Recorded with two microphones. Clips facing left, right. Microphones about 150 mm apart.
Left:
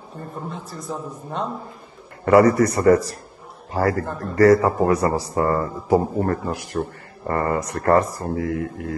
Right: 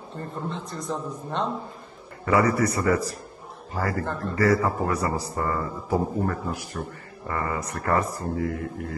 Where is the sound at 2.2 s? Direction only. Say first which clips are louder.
Left 7 dB; 45° left (ahead or behind).